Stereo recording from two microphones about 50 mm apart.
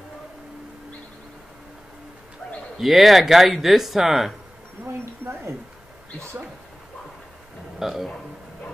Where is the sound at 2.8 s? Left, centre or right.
Centre.